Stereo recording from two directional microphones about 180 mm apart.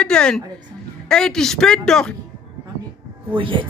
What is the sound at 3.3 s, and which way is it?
Speech, 30° right (ahead or behind).